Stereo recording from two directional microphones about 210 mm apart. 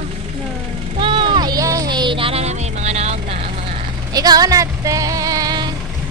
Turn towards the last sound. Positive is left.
turn(degrees=-20)  # may be behind; listen again after turning